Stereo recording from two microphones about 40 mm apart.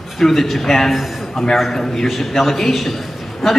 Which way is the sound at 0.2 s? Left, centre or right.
Centre.